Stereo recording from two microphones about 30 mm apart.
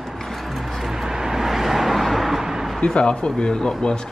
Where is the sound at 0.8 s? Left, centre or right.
Centre.